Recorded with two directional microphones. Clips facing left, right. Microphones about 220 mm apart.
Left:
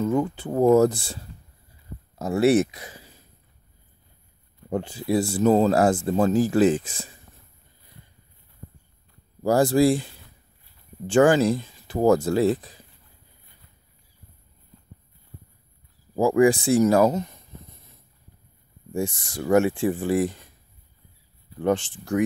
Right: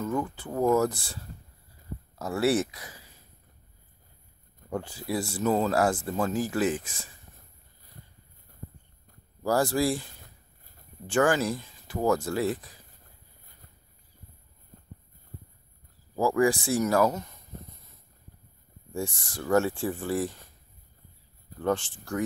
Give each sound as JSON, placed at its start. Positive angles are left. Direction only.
{"t": 0.0, "sound": "speech", "side_deg": 25}
{"t": 2.1, "sound": "speech", "side_deg": 20}
{"t": 4.6, "sound": "speech", "side_deg": 25}
{"t": 9.4, "sound": "speech", "side_deg": 25}
{"t": 10.2, "sound": "a sound", "side_deg": -45}
{"t": 11.1, "sound": "speech", "side_deg": 25}
{"t": 16.2, "sound": "speech", "side_deg": 20}
{"t": 18.9, "sound": "speech", "side_deg": 20}
{"t": 21.5, "sound": "speech", "side_deg": 20}